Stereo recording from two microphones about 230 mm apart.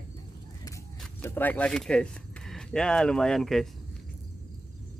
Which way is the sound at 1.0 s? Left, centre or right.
Centre.